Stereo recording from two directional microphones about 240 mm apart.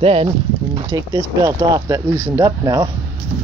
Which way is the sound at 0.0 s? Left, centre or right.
Right.